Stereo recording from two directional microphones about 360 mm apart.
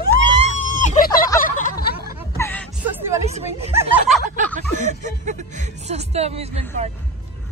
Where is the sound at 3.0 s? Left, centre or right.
Centre.